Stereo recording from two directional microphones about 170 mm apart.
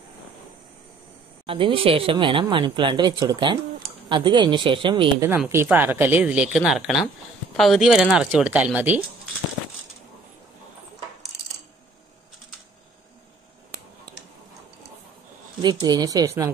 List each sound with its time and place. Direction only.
1.4 s speech: 30° right (ahead or behind)
5.5 s speech: 10° right (ahead or behind)
15.6 s speech: 25° right (ahead or behind)